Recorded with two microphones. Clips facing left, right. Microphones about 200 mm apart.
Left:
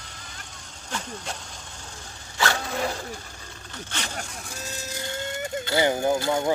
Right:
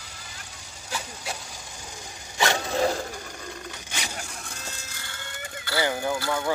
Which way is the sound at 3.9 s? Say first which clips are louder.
Left 1 dB; 10° right (ahead or behind).